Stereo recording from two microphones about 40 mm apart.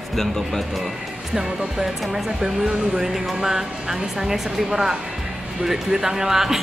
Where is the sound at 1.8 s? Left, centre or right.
Centre.